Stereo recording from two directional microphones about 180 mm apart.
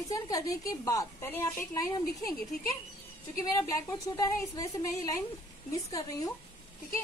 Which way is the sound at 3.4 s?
20° left (ahead or behind).